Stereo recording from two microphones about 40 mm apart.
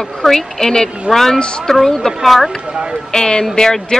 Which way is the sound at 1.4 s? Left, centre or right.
Left.